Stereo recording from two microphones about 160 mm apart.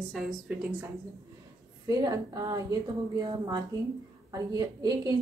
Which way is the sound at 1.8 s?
20° right (ahead or behind).